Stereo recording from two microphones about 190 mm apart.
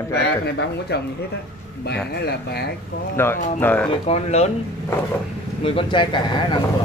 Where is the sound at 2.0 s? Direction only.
60° left (ahead or behind).